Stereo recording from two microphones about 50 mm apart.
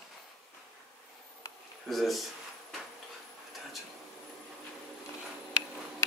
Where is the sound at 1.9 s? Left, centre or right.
Centre.